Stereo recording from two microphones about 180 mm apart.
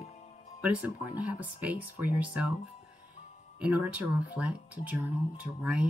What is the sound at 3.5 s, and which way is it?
Speech, 5° right (ahead or behind).